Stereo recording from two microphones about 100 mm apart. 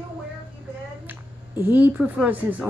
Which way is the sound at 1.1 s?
20° right (ahead or behind).